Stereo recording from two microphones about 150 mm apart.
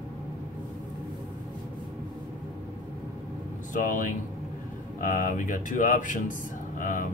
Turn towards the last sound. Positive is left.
turn(degrees=60)  # may be behind; listen again after turning